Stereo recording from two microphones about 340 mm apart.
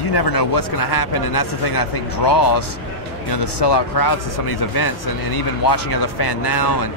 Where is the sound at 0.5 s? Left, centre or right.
Left.